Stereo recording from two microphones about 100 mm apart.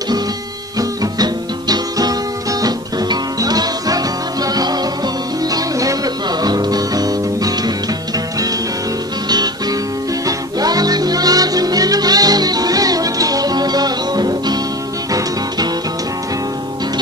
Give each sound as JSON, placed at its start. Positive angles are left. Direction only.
{"t": 0.7, "sound": "music", "side_deg": -40}
{"t": 9.3, "sound": "music", "side_deg": -45}